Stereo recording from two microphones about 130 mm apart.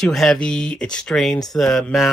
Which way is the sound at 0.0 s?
Centre (ahead or behind).